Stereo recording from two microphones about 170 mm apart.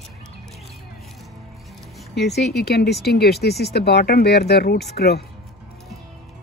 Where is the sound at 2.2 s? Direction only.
75° left (ahead or behind).